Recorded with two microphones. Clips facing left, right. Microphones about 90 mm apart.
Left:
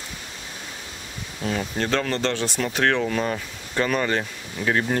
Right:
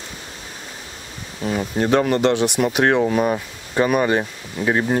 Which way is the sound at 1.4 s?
15° right (ahead or behind).